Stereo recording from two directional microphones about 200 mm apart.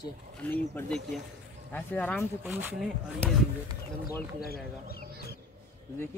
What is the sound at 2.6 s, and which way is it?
Speech, 10° right (ahead or behind).